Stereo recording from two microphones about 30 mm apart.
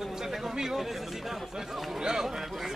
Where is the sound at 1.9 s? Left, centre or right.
Centre.